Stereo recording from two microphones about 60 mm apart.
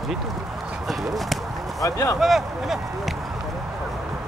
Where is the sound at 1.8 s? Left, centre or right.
Left.